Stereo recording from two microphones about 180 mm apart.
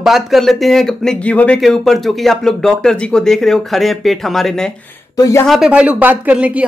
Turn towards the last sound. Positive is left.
turn(degrees=-10)  # may be behind; listen again after turning